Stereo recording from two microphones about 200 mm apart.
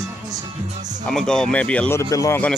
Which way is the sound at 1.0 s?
5° left (ahead or behind).